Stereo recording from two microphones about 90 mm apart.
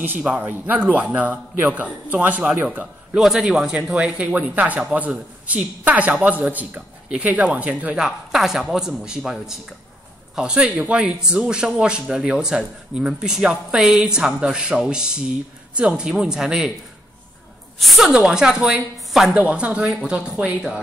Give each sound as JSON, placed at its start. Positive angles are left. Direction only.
{"t": 0.0, "sound": "a man's voice", "side_deg": -20}
{"t": 3.2, "sound": "a man's voice", "side_deg": -5}
{"t": 8.0, "sound": "a man's voice", "side_deg": -5}
{"t": 17.7, "sound": "a man's voice", "side_deg": 0}
{"t": 20.2, "sound": "a man's voice", "side_deg": -15}